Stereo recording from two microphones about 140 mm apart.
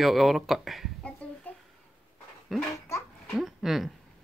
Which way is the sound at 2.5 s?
Centre (ahead or behind).